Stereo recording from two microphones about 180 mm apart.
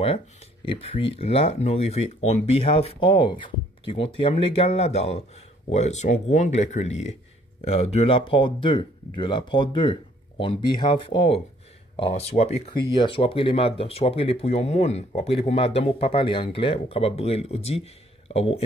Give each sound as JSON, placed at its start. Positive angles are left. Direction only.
{"t": 0.7, "sound": "speech", "side_deg": 30}